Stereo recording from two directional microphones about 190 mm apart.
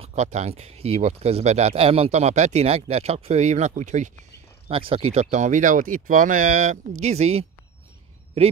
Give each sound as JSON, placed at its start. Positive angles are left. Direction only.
{"t": 0.0, "sound": "speech", "side_deg": -35}
{"t": 4.6, "sound": "speech", "side_deg": -30}